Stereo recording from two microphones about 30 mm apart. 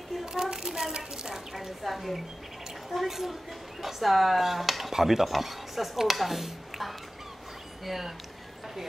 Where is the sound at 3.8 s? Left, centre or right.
Centre.